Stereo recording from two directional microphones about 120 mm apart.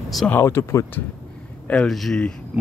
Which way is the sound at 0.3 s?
20° left (ahead or behind).